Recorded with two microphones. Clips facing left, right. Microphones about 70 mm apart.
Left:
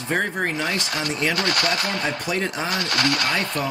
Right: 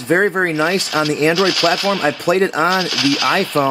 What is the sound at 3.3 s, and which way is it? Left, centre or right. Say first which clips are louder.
Speech: right 8 dB; right.